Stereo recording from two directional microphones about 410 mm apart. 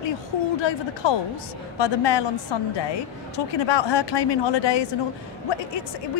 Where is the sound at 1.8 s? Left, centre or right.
Left.